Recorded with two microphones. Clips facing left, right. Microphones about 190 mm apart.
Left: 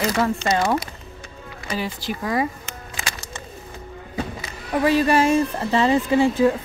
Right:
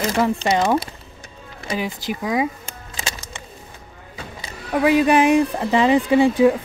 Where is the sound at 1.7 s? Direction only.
20° right (ahead or behind).